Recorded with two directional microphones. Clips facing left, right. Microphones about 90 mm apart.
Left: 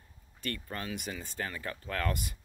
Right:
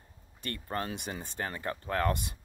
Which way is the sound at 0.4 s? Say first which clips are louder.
Right 3 dB; 25° right (ahead or behind).